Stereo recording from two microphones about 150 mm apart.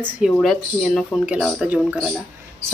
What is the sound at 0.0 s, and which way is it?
A woman's voice, centre (ahead or behind).